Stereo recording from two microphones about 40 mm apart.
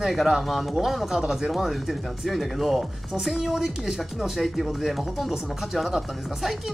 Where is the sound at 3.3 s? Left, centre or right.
Centre.